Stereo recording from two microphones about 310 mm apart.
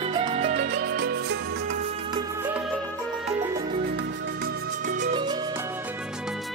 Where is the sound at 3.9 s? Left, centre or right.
Right; by 5.7 s centre.